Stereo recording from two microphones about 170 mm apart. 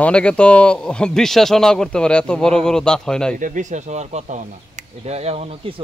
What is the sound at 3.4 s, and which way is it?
Speech, 50° right (ahead or behind).